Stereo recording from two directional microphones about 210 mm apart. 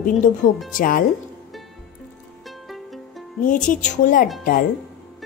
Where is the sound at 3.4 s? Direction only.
40° left (ahead or behind).